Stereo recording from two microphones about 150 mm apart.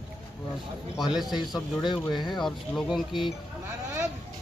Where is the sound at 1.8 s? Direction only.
30° left (ahead or behind).